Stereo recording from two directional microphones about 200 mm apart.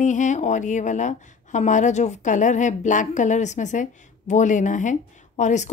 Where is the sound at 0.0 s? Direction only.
40° left (ahead or behind).